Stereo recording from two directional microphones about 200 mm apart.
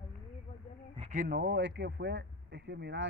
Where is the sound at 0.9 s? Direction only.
35° right (ahead or behind).